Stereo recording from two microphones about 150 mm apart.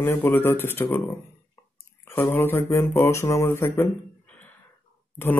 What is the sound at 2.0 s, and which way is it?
Speech, 15° left (ahead or behind).